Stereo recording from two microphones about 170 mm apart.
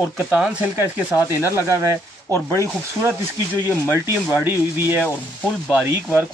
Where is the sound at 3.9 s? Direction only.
15° left (ahead or behind).